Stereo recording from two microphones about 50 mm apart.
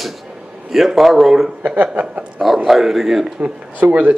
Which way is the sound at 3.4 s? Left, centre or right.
Right.